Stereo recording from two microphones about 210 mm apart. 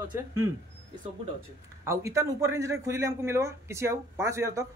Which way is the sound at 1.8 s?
15° right (ahead or behind).